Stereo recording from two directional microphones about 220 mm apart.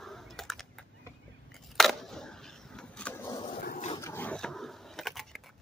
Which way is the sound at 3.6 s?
40° left (ahead or behind).